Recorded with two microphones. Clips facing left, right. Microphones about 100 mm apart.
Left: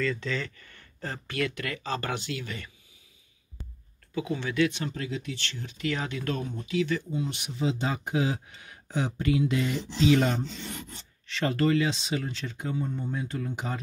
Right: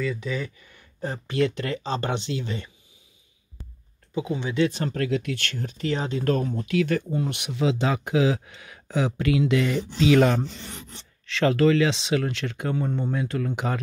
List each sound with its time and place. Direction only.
0.0 s speech: 10° right (ahead or behind)
4.1 s speech: 20° right (ahead or behind)
4.6 s speech: 40° right (ahead or behind)
4.9 s speech: 65° right (ahead or behind); by 13.7 s 80° right